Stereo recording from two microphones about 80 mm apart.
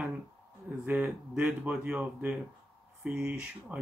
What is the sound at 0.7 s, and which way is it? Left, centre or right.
Speech, centre.